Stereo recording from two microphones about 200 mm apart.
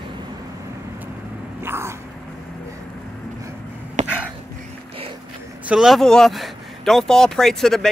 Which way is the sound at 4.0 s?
35° right (ahead or behind).